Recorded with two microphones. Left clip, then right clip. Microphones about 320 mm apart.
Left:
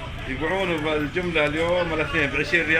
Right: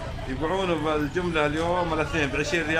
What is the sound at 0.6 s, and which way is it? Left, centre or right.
A man's voice, centre.